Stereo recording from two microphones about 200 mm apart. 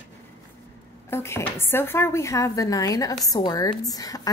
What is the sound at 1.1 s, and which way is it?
A woman's voice, 10° left (ahead or behind).